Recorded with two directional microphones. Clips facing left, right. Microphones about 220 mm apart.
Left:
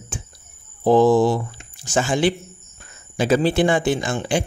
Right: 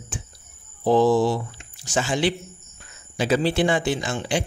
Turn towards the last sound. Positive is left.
turn(degrees=50)  # may be behind; listen again after turning